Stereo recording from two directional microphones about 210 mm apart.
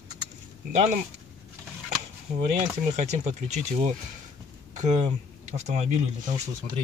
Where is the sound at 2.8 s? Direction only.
35° right (ahead or behind).